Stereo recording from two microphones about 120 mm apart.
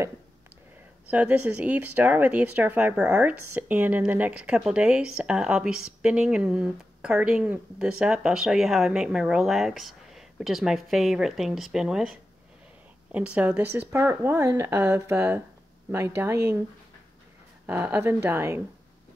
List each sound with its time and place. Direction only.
1.1 s speech: 10° right (ahead or behind)
17.6 s speech: 15° right (ahead or behind)